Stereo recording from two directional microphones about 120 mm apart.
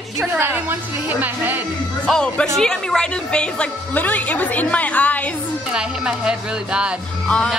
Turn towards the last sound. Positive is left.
turn(degrees=10)  # may be behind; listen again after turning